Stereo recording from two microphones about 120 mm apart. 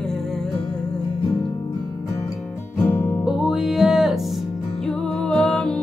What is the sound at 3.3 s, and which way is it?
Music, 5° right (ahead or behind).